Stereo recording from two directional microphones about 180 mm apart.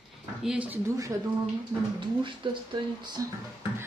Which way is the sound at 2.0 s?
25° right (ahead or behind).